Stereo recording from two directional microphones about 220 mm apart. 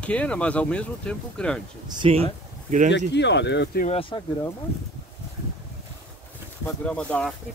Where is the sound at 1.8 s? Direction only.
20° right (ahead or behind).